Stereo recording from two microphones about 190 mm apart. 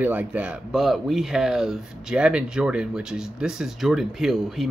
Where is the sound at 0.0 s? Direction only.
10° right (ahead or behind).